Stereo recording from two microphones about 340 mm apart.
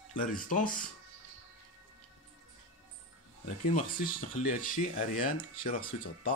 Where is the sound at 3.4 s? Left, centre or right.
Left.